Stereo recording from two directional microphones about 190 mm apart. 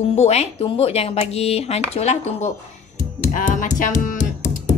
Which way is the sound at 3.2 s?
45° left (ahead or behind).